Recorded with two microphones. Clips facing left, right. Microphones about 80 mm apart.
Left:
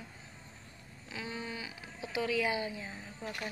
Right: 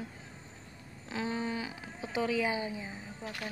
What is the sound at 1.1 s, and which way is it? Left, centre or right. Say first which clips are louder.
Speech: right 6 dB; right.